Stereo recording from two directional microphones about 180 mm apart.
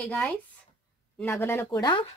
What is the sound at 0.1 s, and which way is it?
A woman's voice, 10° left (ahead or behind).